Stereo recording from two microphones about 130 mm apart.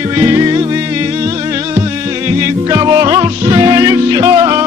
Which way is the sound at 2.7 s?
30° right (ahead or behind).